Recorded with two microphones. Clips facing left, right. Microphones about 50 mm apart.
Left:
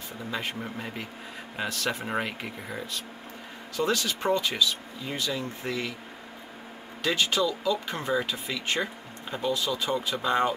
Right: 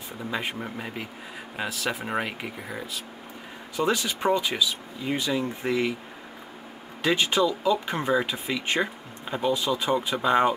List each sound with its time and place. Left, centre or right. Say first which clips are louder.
0.3 s speech: right 2 dB; centre
3.7 s speech: right 2 dB; centre
7.0 s speech: right 3 dB; right